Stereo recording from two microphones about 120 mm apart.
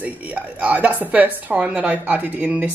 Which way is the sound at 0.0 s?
15° right (ahead or behind).